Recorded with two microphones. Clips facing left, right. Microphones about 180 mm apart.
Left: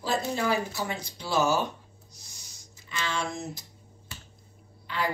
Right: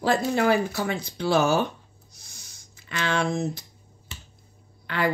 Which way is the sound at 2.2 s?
55° right (ahead or behind).